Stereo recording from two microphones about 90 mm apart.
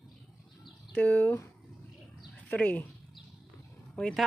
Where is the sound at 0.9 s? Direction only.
20° left (ahead or behind).